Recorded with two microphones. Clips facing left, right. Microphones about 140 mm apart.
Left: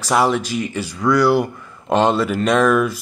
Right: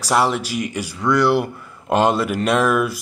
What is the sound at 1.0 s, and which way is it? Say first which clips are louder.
Speech: left 2 dB; centre (ahead or behind).